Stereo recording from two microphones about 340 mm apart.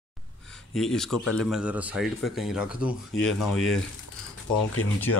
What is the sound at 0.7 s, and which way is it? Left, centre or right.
Speech, centre.